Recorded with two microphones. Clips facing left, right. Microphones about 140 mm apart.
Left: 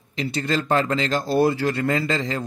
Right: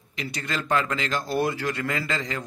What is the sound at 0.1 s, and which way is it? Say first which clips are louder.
A man's voice: left 7 dB; 30° left (ahead or behind).